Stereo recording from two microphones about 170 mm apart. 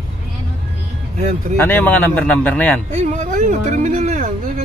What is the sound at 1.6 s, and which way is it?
A man's voice, 10° left (ahead or behind).